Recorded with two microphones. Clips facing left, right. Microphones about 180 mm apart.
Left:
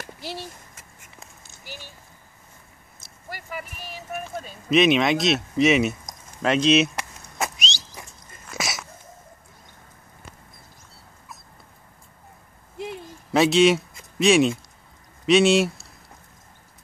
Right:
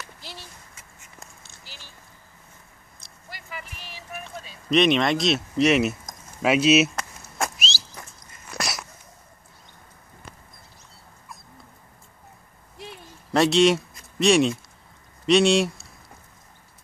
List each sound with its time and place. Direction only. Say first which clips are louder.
0.0 s a sound: left 7 dB; 55° left (ahead or behind)
1.6 s speech: left 9 dB; 55° left (ahead or behind)
3.3 s speech: left 5 dB; 50° left (ahead or behind)
4.6 s speech: left 1 dB; 5° left (ahead or behind)
7.0 s a sound: even; 5° left (ahead or behind)
8.5 s dog: even; centre (ahead or behind)
13.3 s speech: left 1 dB; centre (ahead or behind)